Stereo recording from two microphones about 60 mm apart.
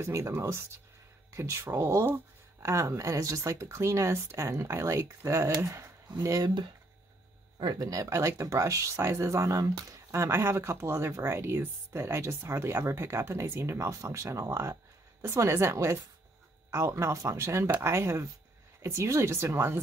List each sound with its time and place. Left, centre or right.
0.0 s speech: right
1.6 s speech: right
6.1 s speech: right
7.5 s speech: right
10.1 s speech: right